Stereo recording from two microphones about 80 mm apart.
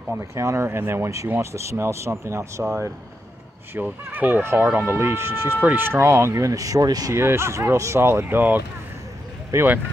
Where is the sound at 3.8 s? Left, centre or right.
Right.